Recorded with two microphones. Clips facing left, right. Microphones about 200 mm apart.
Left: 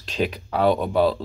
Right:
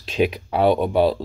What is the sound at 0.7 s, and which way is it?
Speech, 45° right (ahead or behind).